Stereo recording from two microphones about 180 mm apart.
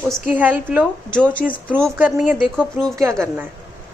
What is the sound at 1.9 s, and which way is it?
A woman's voice, 10° right (ahead or behind).